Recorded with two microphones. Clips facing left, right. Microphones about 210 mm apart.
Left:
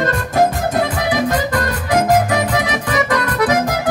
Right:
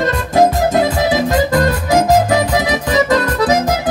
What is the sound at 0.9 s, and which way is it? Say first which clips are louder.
Music: right 3 dB; 25° right (ahead or behind).